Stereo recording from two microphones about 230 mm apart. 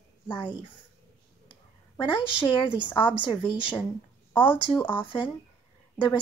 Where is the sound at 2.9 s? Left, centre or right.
Centre.